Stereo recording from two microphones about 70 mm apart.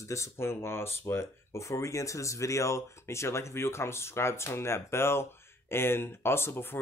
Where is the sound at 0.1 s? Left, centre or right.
Left.